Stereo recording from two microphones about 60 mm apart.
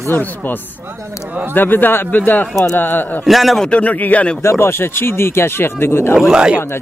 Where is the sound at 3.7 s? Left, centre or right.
Left.